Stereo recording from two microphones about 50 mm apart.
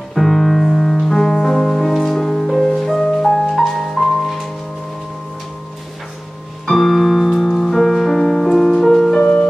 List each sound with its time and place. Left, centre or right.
0.1 s music: centre
6.6 s music: centre
9.2 s music: left